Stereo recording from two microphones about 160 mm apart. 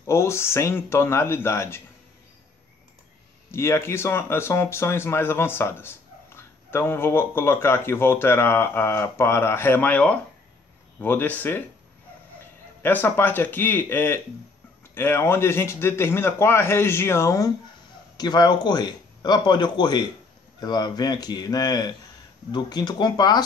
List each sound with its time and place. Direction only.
0.0 s speech: 15° left (ahead or behind)
3.5 s speech: 15° left (ahead or behind)
12.8 s speech: 15° left (ahead or behind)